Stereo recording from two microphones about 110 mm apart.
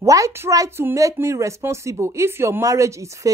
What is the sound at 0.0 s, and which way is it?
Speech, 30° right (ahead or behind).